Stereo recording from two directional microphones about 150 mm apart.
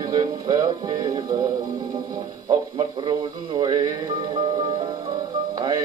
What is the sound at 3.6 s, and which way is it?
Music, 30° right (ahead or behind).